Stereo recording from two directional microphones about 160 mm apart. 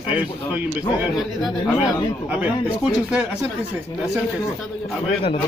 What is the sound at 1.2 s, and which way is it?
Speech, centre (ahead or behind).